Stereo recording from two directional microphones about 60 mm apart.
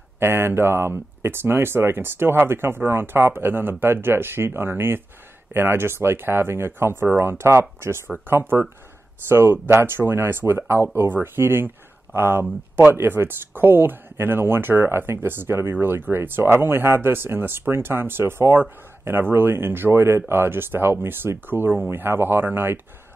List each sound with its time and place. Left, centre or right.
0.2 s speech: right
8.1 s speech: right